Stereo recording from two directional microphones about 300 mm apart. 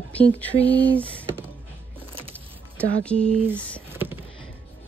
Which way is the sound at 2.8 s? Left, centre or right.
Centre.